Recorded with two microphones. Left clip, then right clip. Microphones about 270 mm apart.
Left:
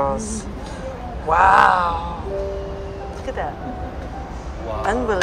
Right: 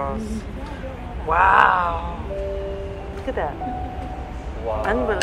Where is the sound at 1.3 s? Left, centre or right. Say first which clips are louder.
Left 2 dB; centre.